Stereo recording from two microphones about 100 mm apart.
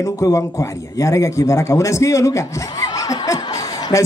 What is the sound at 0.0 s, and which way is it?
Speech, 35° left (ahead or behind).